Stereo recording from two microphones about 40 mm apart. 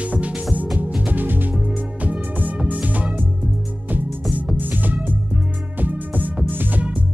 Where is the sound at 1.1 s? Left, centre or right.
Right.